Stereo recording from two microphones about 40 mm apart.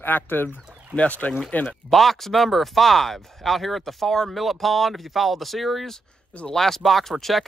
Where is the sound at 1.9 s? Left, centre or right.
Centre.